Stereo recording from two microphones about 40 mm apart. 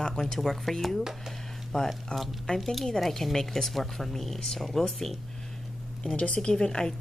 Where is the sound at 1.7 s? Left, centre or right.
Centre.